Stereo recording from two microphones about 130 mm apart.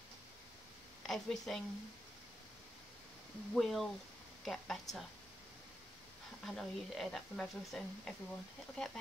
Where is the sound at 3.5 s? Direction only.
Centre (ahead or behind).